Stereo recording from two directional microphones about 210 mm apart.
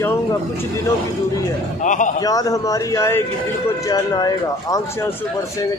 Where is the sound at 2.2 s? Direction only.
15° left (ahead or behind).